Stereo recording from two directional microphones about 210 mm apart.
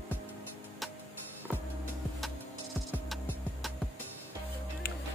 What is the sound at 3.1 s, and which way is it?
Music, centre (ahead or behind).